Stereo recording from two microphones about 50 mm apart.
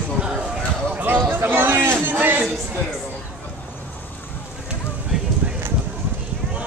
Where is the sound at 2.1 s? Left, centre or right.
Right.